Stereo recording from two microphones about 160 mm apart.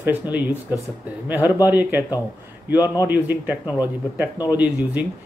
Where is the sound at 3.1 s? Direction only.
10° right (ahead or behind).